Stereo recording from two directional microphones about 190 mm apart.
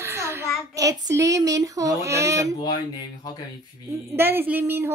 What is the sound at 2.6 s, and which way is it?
Speech, 20° left (ahead or behind).